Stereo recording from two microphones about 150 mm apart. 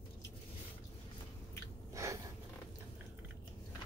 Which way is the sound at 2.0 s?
20° right (ahead or behind).